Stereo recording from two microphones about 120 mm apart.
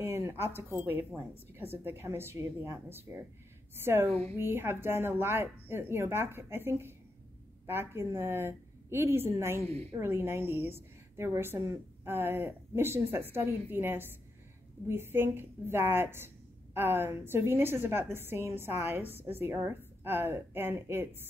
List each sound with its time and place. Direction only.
0.0 s a woman's voice: 20° right (ahead or behind)
4.1 s a woman's voice: 60° right (ahead or behind)
4.4 s a woman's voice: 20° right (ahead or behind)